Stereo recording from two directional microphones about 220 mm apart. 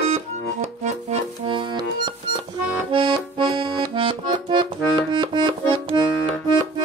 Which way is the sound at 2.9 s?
20° right (ahead or behind).